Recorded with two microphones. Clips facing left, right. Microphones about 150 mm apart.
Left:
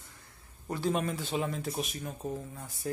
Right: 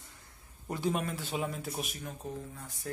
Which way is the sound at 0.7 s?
20° right (ahead or behind).